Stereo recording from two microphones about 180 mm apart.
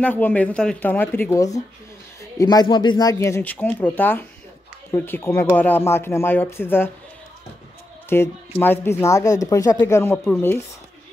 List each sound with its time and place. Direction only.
0.0 s speech: 10° left (ahead or behind)
8.1 s speech: 10° left (ahead or behind)